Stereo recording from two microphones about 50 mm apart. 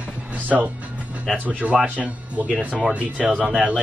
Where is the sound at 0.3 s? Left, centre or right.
Right.